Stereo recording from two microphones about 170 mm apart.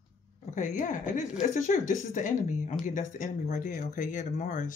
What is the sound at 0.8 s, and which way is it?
Speech, 45° left (ahead or behind).